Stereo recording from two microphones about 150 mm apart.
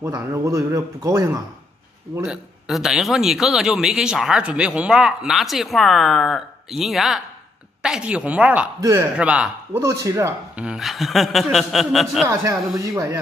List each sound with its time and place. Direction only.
0.0 s speech: 20° right (ahead or behind)
2.2 s a man's voice: 5° right (ahead or behind)
8.8 s speech: 25° right (ahead or behind)
9.1 s a woman's voice: 10° right (ahead or behind)
9.8 s speech: 20° right (ahead or behind)
10.6 s a man's voice: 5° right (ahead or behind)
12.3 s speech: 20° right (ahead or behind)